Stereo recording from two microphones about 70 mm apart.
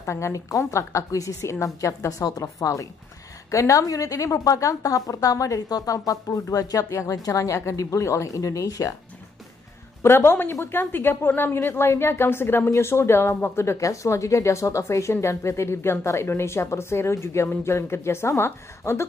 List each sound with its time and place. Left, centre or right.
0.0 s a woman's voice: left
10.0 s speech: left